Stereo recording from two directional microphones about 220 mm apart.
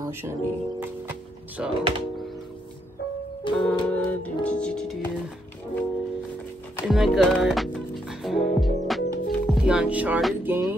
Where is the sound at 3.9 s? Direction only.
5° left (ahead or behind).